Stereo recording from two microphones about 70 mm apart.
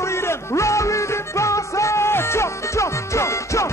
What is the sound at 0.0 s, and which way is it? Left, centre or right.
Music, left.